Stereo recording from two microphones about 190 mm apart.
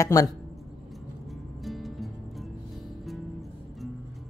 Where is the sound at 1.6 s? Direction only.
Centre (ahead or behind).